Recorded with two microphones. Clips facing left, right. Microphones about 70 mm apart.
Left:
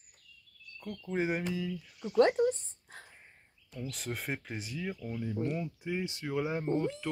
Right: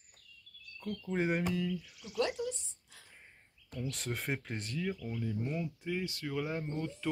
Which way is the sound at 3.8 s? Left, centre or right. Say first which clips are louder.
Even; centre.